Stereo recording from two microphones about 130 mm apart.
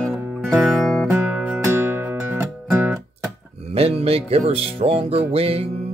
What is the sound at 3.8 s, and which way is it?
Music, 50° right (ahead or behind).